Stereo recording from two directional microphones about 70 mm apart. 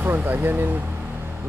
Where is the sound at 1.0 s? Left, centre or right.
Right.